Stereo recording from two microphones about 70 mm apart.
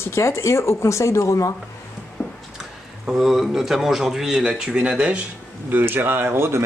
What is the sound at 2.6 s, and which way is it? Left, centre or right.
Speech, centre.